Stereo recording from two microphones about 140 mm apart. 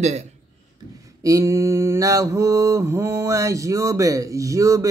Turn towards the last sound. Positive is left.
turn(degrees=-25)  # may be behind; listen again after turning